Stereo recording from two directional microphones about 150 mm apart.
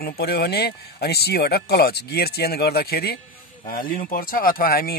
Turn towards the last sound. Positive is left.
turn(degrees=85)